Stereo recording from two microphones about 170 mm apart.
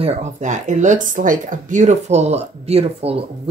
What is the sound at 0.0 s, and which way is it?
Speech, 45° right (ahead or behind).